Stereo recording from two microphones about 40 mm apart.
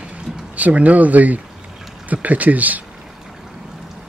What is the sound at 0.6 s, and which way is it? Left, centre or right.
Speech, right.